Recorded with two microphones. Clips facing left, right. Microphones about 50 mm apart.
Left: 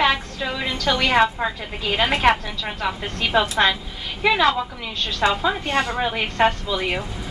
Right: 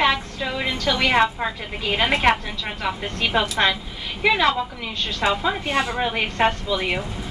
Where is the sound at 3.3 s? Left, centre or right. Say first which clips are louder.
Left 2 dB; centre.